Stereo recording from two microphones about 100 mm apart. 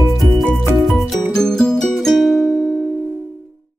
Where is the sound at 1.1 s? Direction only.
5° left (ahead or behind).